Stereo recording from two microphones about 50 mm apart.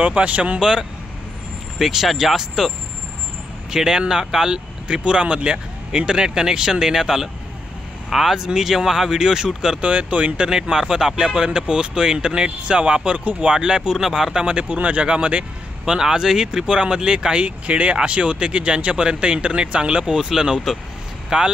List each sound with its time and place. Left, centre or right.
0.0 s speech: right
0.6 s speech: centre
3.7 s speech: centre
9.8 s speech: right
14.7 s speech: right
15.8 s speech: centre